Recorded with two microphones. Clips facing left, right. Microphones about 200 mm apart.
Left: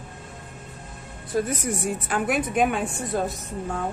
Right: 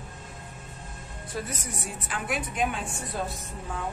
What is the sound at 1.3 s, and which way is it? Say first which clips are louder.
A woman's voice: left 10 dB; 45° left (ahead or behind).